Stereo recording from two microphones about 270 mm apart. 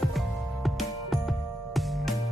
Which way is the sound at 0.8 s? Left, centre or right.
Centre.